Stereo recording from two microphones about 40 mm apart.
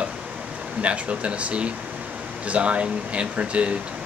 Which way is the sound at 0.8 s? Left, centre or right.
Right.